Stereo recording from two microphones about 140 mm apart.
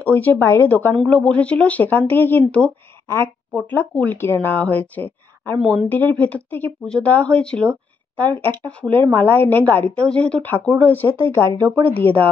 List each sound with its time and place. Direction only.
0.0 s speech: 15° left (ahead or behind)
5.6 s a woman's voice: centre (ahead or behind)
5.9 s speech: 10° left (ahead or behind)
11.2 s speech: 30° right (ahead or behind)
11.9 s speech: 10° left (ahead or behind)